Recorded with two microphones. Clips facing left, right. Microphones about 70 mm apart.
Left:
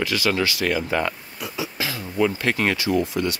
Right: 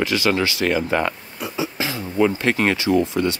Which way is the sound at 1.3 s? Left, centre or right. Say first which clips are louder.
Right 4 dB; right.